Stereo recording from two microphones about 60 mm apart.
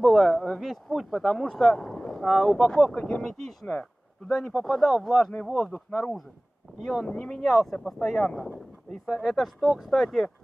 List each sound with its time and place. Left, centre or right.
0.0 s speech: centre
4.6 s speech: centre
5.9 s speech: centre
6.8 s speech: centre
7.1 s speech: centre
7.4 s speech: centre
9.0 s speech: centre